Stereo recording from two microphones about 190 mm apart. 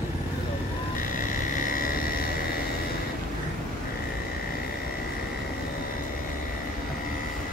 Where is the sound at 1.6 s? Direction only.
50° left (ahead or behind).